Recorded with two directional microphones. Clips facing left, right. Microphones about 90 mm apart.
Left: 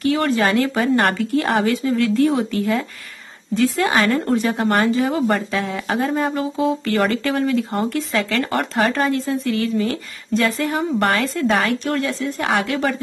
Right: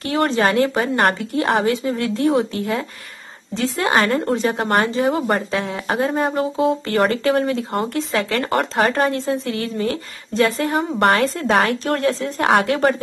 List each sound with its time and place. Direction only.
0.0 s a woman's voice: 35° right (ahead or behind)
5.3 s speech: 25° right (ahead or behind); by 12.9 s 45° right (ahead or behind)